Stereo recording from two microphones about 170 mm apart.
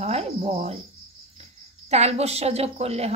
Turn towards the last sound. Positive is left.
turn(degrees=-40)  # may be behind; listen again after turning